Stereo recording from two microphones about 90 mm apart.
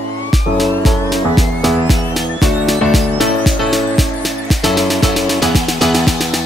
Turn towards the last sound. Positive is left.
turn(degrees=0)  # may be behind; listen again after turning